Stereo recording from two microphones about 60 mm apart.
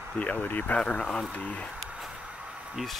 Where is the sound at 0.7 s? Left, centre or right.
Centre.